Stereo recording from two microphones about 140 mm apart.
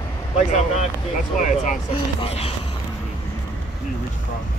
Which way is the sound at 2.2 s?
45° left (ahead or behind).